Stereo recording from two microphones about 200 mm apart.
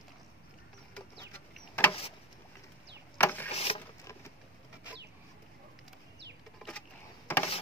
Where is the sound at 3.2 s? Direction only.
10° left (ahead or behind).